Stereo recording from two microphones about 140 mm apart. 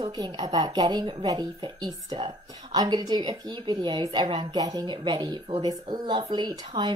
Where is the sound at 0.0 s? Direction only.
30° right (ahead or behind).